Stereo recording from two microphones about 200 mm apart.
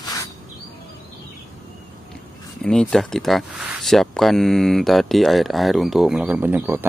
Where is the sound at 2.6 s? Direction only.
5° left (ahead or behind).